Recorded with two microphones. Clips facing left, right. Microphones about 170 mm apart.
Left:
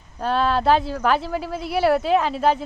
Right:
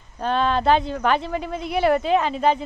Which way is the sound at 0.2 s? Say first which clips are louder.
Even; 5° left (ahead or behind).